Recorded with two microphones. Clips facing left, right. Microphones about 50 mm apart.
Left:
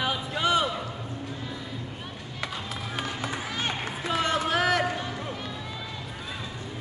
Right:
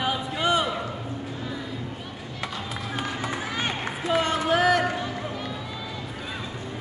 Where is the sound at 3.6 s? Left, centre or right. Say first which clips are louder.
Right 2 dB; right.